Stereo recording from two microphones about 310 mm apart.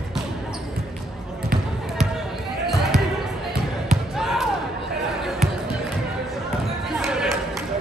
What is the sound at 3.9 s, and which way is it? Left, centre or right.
Basketball bounce, centre.